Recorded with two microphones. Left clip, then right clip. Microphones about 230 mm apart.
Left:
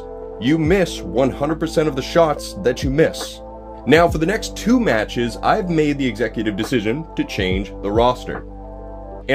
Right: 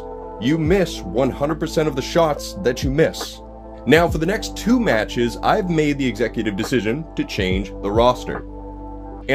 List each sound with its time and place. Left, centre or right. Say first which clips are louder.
0.4 s speech: left 2 dB; centre